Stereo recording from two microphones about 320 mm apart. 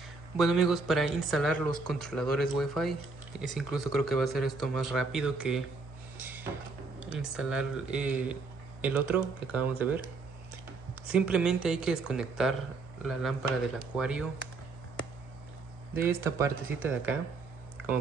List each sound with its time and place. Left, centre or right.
0.4 s speech: centre
6.1 s drawer open or close: centre
7.0 s speech: centre
11.1 s speech: centre
15.9 s speech: centre